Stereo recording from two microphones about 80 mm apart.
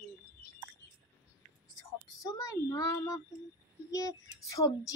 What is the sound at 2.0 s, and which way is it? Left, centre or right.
A child's voice, left.